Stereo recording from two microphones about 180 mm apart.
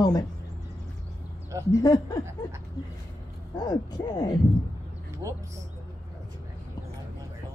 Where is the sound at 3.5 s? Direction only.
20° left (ahead or behind).